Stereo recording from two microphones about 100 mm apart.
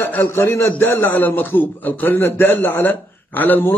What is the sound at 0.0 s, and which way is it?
A man's voice, 20° left (ahead or behind).